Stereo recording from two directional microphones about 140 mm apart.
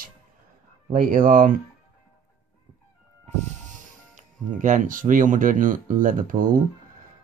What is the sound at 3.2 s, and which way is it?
Music, 55° right (ahead or behind).